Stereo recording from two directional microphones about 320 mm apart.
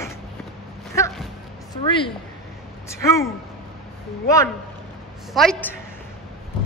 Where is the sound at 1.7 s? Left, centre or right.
Centre.